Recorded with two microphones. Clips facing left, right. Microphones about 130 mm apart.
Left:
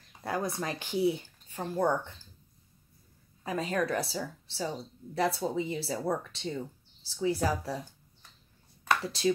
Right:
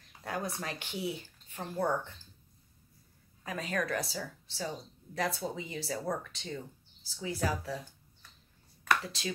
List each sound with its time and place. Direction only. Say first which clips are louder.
0.2 s speech: left 4 dB; 35° left (ahead or behind)
3.4 s a woman's voice: left 4 dB; 30° left (ahead or behind)
8.8 s a sound: left 4 dB; 35° left (ahead or behind)